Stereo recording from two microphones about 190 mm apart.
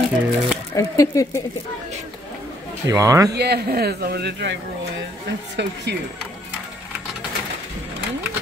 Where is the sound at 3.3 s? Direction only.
60° right (ahead or behind).